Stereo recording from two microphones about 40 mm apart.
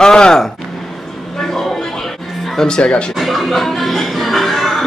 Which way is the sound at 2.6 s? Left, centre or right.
Left.